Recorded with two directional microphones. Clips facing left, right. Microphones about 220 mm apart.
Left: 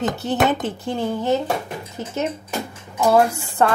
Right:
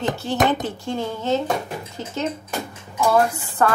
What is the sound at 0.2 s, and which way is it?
Speech, 20° left (ahead or behind).